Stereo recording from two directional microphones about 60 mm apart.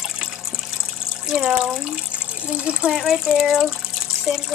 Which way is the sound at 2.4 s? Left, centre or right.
Centre.